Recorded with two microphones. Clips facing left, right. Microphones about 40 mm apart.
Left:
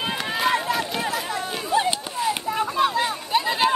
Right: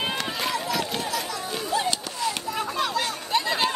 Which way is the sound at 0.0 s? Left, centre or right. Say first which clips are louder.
Left 3 dB; centre.